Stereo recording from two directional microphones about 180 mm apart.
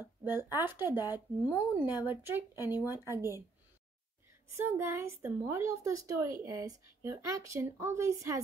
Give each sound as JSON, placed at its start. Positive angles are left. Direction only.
{"t": 0.0, "sound": "a sound", "side_deg": -10}
{"t": 0.6, "sound": "speech", "side_deg": -10}
{"t": 4.5, "sound": "speech", "side_deg": -15}